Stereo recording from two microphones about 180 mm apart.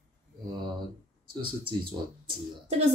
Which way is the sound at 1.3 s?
25° right (ahead or behind).